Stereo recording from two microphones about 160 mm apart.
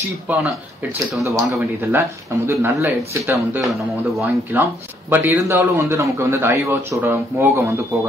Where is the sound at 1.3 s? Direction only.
20° right (ahead or behind).